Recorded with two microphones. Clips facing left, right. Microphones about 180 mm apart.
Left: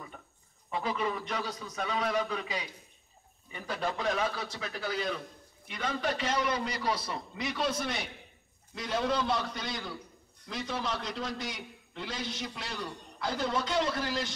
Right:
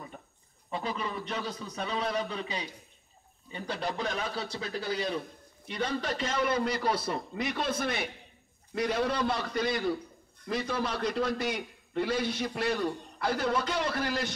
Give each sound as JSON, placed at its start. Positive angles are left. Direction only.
{"t": 0.7, "sound": "a man's voice", "side_deg": -35}
{"t": 6.4, "sound": "a man's voice", "side_deg": -55}